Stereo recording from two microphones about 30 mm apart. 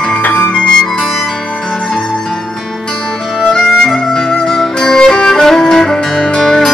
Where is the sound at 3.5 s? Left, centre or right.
Left.